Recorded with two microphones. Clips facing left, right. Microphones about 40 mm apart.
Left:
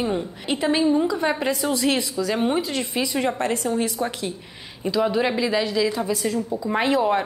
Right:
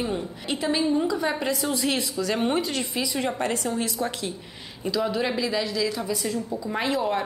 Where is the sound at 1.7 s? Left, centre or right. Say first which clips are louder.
Left 5 dB; left.